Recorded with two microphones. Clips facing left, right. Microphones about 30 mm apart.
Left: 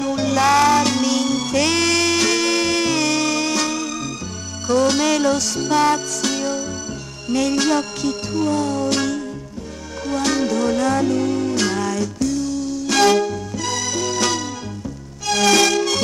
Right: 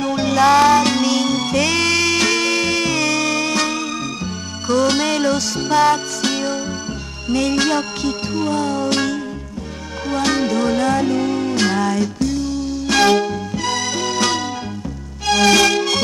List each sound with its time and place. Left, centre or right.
0.0 s music: right
0.4 s music: right
0.8 s music: right
1.6 s music: right
1.9 s music: right
15.4 s music: right